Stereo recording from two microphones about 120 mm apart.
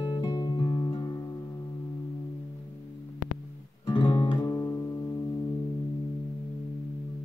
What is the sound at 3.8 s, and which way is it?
Guitar, 40° left (ahead or behind).